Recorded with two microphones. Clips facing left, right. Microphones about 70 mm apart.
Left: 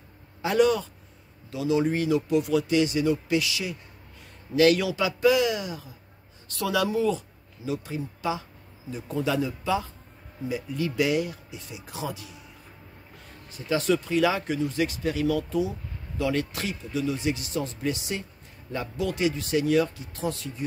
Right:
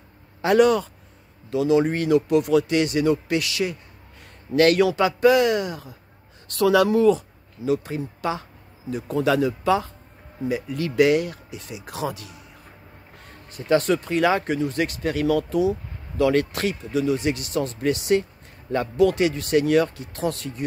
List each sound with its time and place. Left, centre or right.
0.4 s speech: right
8.9 s speech: right